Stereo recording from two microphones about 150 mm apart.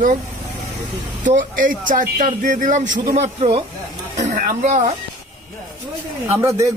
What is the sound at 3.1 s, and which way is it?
Speech, 45° right (ahead or behind).